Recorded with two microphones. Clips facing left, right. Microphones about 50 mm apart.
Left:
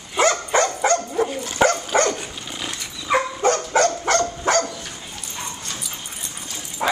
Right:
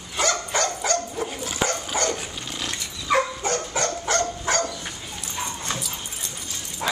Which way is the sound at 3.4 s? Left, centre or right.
Left.